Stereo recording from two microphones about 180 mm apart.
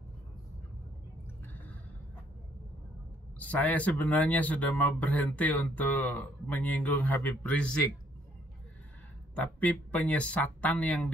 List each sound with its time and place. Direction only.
3.3 s speech: 10° left (ahead or behind)
9.3 s speech: 10° left (ahead or behind)